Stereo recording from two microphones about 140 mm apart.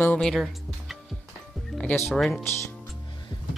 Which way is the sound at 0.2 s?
Centre (ahead or behind).